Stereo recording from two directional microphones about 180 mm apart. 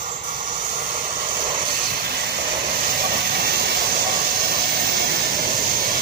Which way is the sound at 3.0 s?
55° right (ahead or behind).